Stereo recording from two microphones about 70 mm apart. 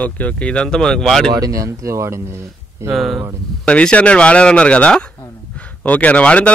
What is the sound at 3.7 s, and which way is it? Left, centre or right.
Speech, centre.